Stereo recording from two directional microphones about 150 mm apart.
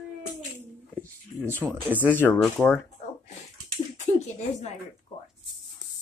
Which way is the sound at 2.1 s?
10° left (ahead or behind).